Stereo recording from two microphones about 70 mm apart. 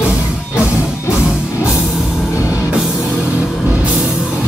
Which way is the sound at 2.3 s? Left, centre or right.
Left.